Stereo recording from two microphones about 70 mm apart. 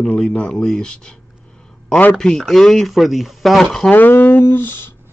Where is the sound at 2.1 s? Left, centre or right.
Centre.